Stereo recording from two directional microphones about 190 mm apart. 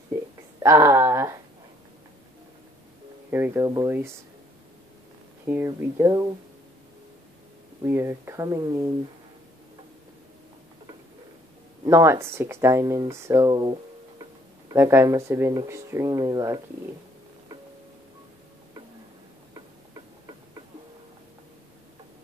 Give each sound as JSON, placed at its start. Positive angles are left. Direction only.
{"t": 0.6, "sound": "a sound", "side_deg": -15}
{"t": 3.3, "sound": "speech", "side_deg": -10}
{"t": 5.5, "sound": "speech", "side_deg": -15}
{"t": 7.8, "sound": "speech", "side_deg": -15}
{"t": 11.8, "sound": "speech", "side_deg": -15}